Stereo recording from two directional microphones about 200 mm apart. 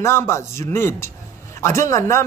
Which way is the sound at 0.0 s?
15° left (ahead or behind).